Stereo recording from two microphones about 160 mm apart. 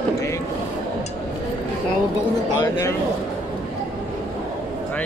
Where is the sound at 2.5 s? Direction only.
25° left (ahead or behind).